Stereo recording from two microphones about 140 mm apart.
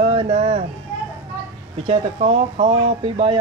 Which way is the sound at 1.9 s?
50° right (ahead or behind).